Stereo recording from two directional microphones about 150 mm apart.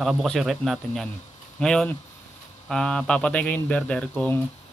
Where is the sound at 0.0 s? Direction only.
Centre (ahead or behind).